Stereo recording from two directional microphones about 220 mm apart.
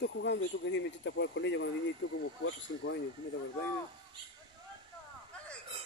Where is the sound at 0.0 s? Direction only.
55° left (ahead or behind).